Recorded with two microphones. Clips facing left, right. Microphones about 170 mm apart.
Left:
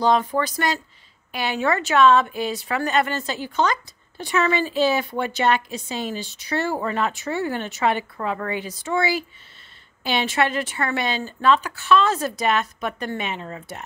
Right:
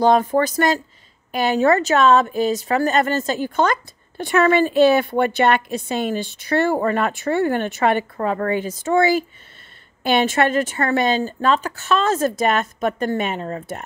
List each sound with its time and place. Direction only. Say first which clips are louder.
0.0 s speech: right 4 dB; 50° right (ahead or behind)